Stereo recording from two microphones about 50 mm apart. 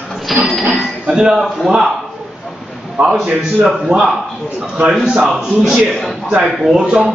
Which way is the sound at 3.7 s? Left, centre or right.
Centre.